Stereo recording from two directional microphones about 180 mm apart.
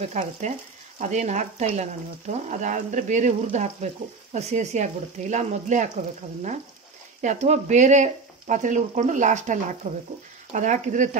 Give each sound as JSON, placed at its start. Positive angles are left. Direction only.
{"t": 0.0, "sound": "frying", "side_deg": -40}
{"t": 7.2, "sound": "speech", "side_deg": -40}